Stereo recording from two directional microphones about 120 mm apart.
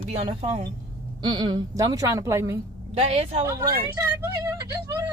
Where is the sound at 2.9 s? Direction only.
60° right (ahead or behind).